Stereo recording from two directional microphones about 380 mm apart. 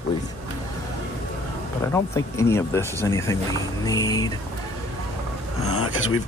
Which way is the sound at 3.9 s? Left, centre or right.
Centre.